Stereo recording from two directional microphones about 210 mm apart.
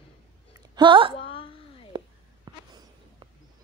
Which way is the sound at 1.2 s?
25° left (ahead or behind).